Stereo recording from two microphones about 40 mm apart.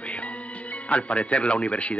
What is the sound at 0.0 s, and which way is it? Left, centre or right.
Speech, left.